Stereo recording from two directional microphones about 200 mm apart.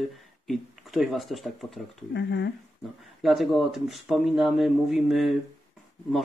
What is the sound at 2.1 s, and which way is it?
Speech, 60° left (ahead or behind).